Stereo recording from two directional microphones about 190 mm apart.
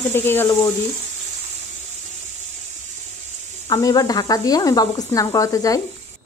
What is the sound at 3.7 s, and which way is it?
Speech, 20° left (ahead or behind).